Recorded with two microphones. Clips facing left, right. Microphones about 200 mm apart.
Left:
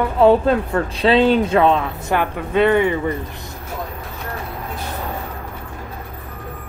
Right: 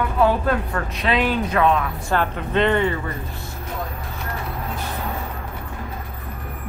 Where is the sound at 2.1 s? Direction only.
10° left (ahead or behind).